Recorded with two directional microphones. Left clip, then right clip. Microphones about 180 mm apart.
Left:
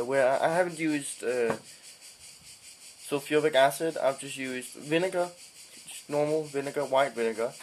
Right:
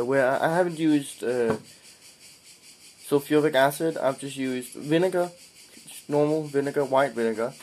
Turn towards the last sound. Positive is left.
turn(degrees=-10)  # may be behind; listen again after turning